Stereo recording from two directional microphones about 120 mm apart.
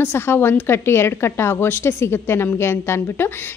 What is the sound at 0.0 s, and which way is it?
A woman's voice, 20° left (ahead or behind).